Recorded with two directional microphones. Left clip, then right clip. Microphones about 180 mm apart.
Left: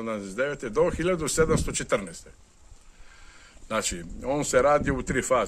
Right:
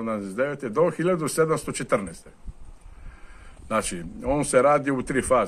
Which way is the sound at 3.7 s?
15° left (ahead or behind).